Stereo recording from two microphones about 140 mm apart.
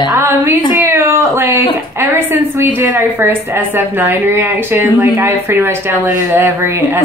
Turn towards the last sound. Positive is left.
turn(degrees=-15)  # may be behind; listen again after turning